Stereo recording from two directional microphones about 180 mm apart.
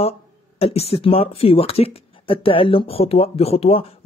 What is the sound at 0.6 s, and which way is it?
Speech, 35° left (ahead or behind).